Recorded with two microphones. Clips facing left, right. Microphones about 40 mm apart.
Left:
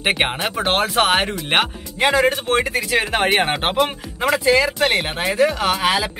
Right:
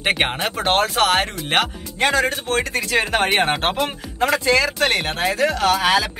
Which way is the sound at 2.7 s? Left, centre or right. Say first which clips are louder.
Even; centre.